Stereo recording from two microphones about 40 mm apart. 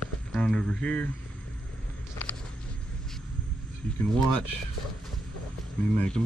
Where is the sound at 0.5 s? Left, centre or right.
Centre.